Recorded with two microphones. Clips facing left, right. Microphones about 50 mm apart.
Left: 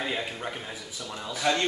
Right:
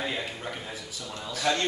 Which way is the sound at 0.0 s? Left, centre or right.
Centre.